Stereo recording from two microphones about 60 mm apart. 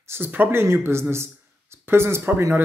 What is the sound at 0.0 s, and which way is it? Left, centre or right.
Speech, right.